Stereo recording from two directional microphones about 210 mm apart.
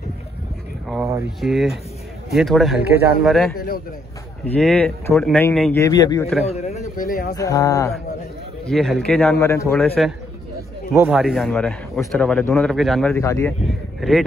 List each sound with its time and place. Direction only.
1.4 s a man's voice: centre (ahead or behind)
3.5 s a man's voice: 45° left (ahead or behind)
4.6 s a man's voice: 5° left (ahead or behind)
6.4 s speech: 30° left (ahead or behind)
7.3 s speech: 15° left (ahead or behind)
8.6 s a man's voice: centre (ahead or behind)
9.8 s a man's voice: centre (ahead or behind)
13.2 s speech: 10° left (ahead or behind)